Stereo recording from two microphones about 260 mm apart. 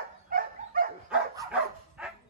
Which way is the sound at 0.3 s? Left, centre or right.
Right.